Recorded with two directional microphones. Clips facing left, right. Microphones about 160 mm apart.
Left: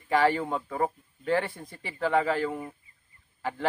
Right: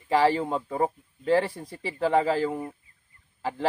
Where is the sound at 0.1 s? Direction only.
30° right (ahead or behind).